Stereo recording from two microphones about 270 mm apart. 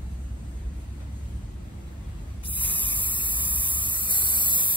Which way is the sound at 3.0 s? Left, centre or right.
Centre.